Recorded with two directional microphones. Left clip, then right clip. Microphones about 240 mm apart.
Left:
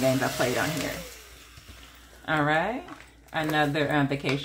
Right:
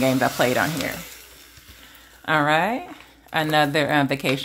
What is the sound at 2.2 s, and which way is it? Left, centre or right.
Speech, right.